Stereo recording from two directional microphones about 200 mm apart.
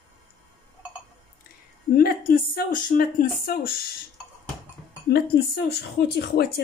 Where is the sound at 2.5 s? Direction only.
45° left (ahead or behind).